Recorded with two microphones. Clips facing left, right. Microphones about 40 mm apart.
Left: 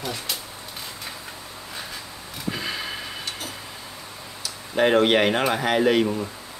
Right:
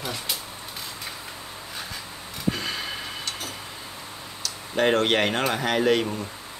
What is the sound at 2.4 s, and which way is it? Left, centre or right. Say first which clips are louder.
Tick-tock: right 1 dB; centre.